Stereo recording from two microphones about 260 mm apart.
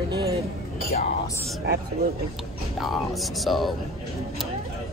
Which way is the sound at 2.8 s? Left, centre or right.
Centre.